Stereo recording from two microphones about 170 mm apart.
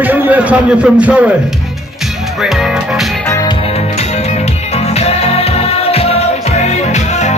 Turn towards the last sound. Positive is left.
turn(degrees=40)  # may be behind; listen again after turning